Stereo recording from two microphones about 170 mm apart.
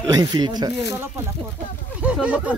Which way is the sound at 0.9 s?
15° right (ahead or behind).